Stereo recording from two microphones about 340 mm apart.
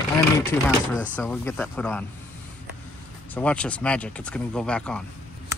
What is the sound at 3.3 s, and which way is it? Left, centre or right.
Speech, centre.